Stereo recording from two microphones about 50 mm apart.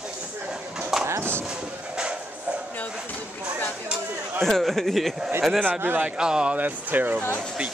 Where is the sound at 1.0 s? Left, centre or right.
Right.